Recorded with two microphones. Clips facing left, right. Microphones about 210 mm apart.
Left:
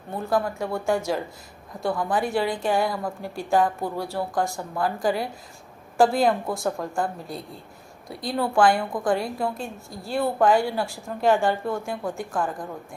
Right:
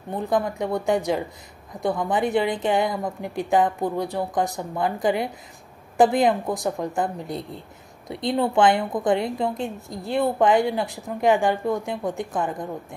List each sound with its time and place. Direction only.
0.1 s a woman's voice: 20° right (ahead or behind)